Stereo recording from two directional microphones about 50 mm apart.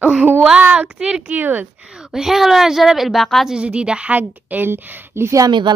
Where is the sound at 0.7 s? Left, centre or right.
Right.